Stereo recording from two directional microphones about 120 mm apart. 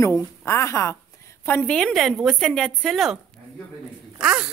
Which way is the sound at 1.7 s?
5° left (ahead or behind).